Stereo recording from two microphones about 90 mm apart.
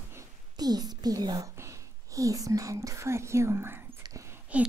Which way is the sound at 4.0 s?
35° right (ahead or behind).